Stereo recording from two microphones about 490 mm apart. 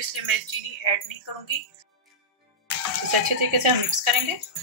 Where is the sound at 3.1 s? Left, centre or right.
Right.